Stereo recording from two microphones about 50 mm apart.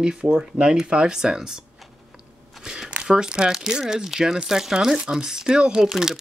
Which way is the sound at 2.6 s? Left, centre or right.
Centre.